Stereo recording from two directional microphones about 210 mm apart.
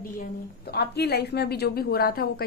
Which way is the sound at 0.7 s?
50° left (ahead or behind).